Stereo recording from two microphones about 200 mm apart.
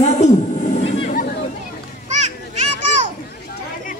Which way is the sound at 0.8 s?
35° left (ahead or behind).